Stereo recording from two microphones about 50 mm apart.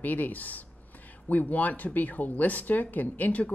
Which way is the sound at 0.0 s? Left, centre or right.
Left.